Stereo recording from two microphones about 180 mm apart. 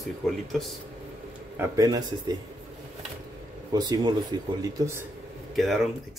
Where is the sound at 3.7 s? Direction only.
20° right (ahead or behind).